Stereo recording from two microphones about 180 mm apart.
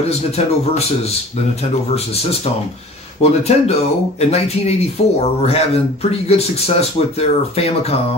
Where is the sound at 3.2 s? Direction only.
35° left (ahead or behind).